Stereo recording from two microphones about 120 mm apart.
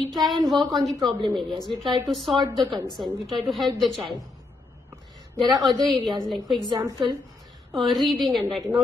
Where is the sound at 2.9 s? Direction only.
Centre (ahead or behind).